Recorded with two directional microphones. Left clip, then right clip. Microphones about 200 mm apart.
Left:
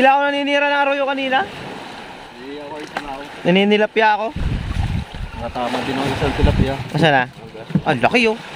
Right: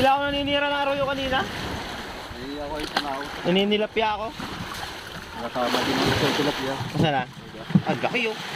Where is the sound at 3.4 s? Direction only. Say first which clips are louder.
Left 8 dB; 45° left (ahead or behind).